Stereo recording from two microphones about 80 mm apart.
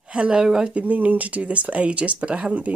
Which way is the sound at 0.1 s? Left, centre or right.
Centre.